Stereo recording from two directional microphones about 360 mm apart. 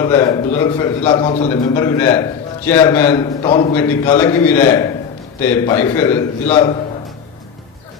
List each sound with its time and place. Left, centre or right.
0.0 s a man's voice: centre
6.4 s a man's voice: centre